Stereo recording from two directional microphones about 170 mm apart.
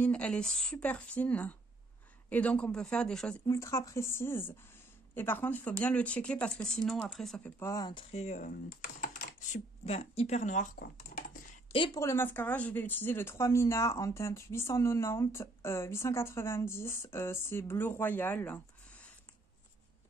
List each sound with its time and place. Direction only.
0.0 s speech: 5° left (ahead or behind)
3.4 s speech: 15° left (ahead or behind); by 10.7 s 45° left (ahead or behind)
10.8 s a sound: 55° left (ahead or behind)
11.7 s speech: 30° left (ahead or behind)
12.0 s speech: 15° left (ahead or behind)